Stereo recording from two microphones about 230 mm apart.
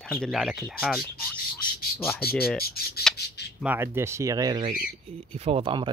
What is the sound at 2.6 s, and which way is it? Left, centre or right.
Speech, left.